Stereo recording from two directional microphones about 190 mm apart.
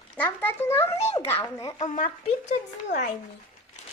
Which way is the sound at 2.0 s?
40° left (ahead or behind).